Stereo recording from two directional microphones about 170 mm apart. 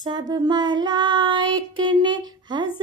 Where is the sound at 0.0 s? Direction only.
25° right (ahead or behind).